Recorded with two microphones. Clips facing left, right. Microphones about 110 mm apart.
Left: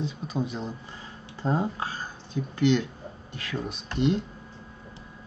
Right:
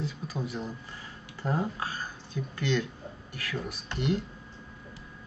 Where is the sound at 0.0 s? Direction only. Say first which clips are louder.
Left 4 dB; 20° left (ahead or behind).